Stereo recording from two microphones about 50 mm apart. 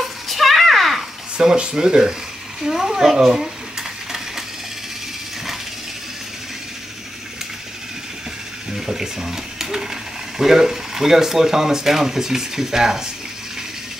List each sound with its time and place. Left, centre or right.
0.3 s a sound: centre
1.4 s speech: centre
8.7 s speech: centre